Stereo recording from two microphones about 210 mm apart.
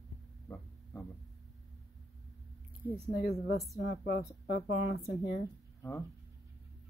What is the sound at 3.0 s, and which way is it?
Speech, 50° left (ahead or behind).